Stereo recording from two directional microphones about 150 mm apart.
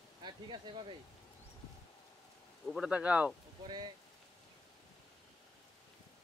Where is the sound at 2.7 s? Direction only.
5° right (ahead or behind).